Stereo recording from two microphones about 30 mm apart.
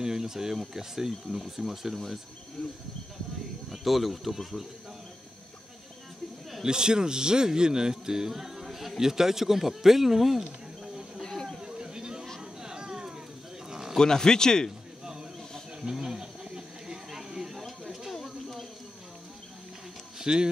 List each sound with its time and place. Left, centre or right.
0.0 s a man's voice: centre
2.6 s speech: centre
3.7 s speech: centre
6.6 s a man's voice: right; by 10.4 s centre
11.6 s a sound: right
13.7 s sheep: centre
13.9 s speech: centre
15.8 s a sound: centre
20.2 s a sound: right